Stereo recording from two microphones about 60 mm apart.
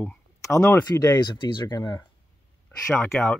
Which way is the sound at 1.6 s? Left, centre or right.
Left.